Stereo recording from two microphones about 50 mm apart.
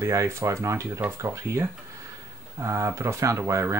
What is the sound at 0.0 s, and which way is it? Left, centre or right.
Speech, right.